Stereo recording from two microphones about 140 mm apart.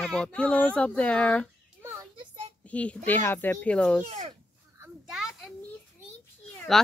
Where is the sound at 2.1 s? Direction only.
35° right (ahead or behind).